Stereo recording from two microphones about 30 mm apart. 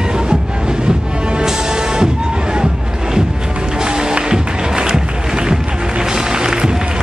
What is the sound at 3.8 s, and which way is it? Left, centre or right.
Music, right.